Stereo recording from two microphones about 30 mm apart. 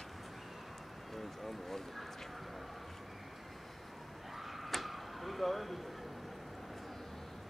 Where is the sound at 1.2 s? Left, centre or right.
Centre.